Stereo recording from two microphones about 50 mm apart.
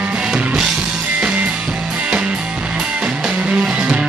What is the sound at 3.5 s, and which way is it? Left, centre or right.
Music, right.